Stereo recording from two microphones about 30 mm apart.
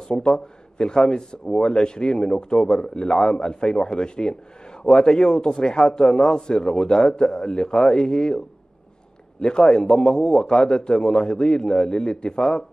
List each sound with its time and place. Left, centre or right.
0.1 s a man's voice: left
9.4 s a man's voice: left